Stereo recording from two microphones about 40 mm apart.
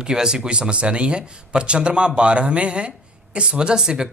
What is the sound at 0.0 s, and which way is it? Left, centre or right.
Speech, centre.